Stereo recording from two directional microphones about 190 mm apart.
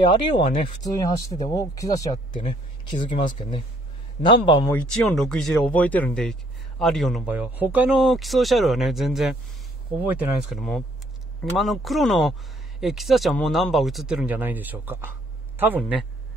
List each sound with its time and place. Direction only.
0.0 s speech: 25° left (ahead or behind)
4.2 s speech: 25° left (ahead or behind)
4.7 s a man's voice: centre (ahead or behind)